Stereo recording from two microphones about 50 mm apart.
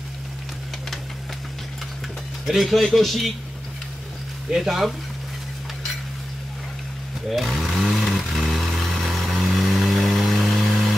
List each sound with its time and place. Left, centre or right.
2.4 s speech: centre
4.6 s speech: centre
7.2 s sewing machine: centre
8.2 s vehicle: centre